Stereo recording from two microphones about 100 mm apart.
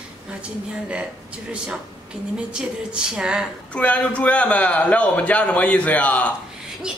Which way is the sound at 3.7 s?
15° left (ahead or behind).